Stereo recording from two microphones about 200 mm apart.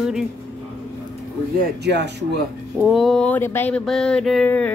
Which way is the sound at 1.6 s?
60° right (ahead or behind).